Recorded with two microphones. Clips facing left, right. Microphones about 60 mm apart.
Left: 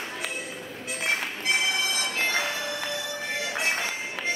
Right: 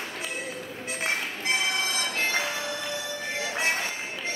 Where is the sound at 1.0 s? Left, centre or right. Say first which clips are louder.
Left 1 dB; right.